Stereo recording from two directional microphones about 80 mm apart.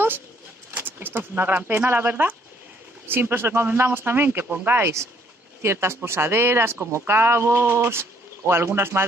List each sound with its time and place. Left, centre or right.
0.7 s speech: right